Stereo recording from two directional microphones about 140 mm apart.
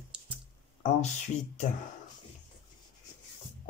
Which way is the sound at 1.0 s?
55° left (ahead or behind).